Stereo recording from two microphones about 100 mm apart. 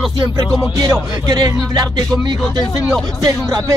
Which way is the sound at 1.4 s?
40° right (ahead or behind).